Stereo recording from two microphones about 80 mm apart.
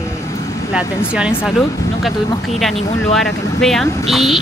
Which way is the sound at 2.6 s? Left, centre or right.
Centre.